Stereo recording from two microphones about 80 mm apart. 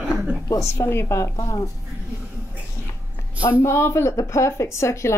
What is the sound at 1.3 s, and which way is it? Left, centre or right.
Speech, left.